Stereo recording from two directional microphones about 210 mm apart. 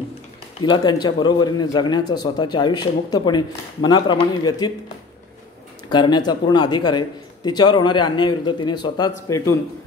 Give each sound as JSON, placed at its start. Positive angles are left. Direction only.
{"t": 0.6, "sound": "a man's voice", "side_deg": 20}
{"t": 5.9, "sound": "a man's voice", "side_deg": 20}